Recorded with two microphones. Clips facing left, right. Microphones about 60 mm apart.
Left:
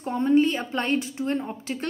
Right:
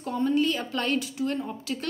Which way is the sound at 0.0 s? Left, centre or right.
Left.